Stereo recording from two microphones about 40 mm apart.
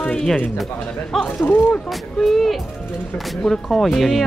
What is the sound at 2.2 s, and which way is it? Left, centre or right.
Speech, centre.